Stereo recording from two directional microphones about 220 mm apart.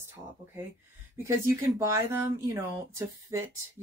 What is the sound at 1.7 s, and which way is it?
Speech, 15° right (ahead or behind).